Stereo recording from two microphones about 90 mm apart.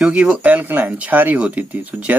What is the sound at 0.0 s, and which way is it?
Speech, 10° right (ahead or behind).